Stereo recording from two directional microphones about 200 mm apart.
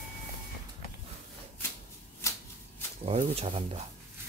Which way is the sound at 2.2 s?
15° left (ahead or behind).